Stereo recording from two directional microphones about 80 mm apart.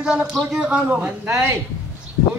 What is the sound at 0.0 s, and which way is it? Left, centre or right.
Speech, centre.